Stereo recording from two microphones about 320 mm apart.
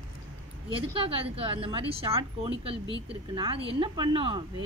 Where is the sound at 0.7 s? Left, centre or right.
Centre.